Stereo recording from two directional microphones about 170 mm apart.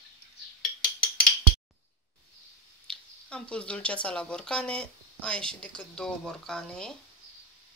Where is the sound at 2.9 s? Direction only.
5° left (ahead or behind).